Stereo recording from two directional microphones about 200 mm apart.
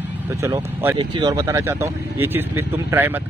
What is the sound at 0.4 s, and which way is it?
Speech, 15° right (ahead or behind).